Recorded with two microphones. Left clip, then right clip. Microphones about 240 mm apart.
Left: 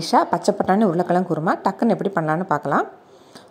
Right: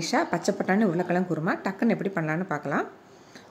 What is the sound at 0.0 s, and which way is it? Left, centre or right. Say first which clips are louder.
A woman's voice: left 8 dB; centre.